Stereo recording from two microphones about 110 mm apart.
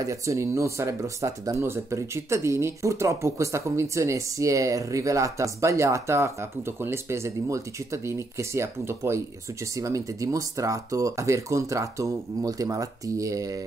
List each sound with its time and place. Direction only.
0.0 s speech: 30° right (ahead or behind)